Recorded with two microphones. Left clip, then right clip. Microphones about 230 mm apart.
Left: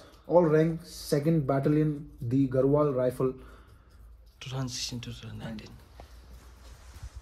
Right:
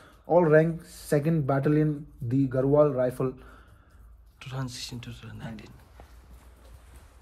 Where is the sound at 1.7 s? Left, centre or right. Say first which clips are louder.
Right 2 dB; centre.